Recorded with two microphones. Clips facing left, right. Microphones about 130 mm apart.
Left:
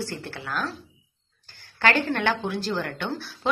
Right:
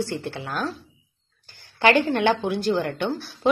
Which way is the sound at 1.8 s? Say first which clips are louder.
Right 4 dB; 15° right (ahead or behind).